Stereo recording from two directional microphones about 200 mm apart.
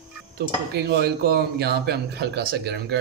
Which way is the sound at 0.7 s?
50° right (ahead or behind).